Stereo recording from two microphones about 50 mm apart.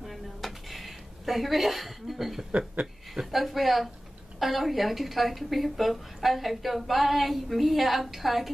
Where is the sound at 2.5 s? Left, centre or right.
Right.